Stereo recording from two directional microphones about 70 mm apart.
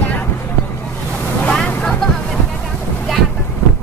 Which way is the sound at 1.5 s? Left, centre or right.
Centre.